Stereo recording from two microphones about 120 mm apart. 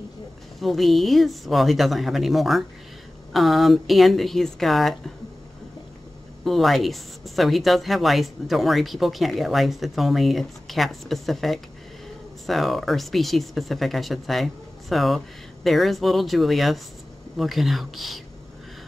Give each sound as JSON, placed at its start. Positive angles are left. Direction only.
{"t": 0.6, "sound": "speech", "side_deg": 0}
{"t": 6.4, "sound": "speech", "side_deg": 0}